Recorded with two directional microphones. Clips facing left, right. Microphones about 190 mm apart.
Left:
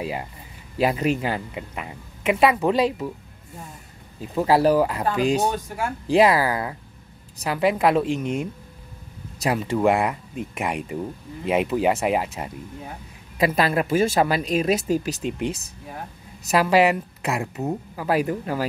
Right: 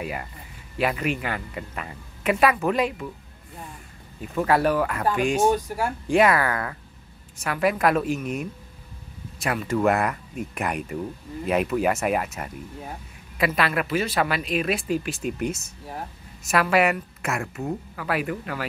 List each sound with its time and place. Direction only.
0.0 s speech: 25° left (ahead or behind)
1.5 s speech: 15° left (ahead or behind)
2.4 s speech: 30° left (ahead or behind)
4.2 s speech: 30° left (ahead or behind)
9.8 s speech: 15° left (ahead or behind)
13.4 s speech: 40° left (ahead or behind)
17.2 s speech: 20° left (ahead or behind)